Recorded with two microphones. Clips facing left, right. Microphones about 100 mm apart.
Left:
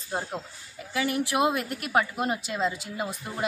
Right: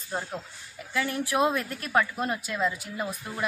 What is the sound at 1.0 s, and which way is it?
Speech, 75° left (ahead or behind).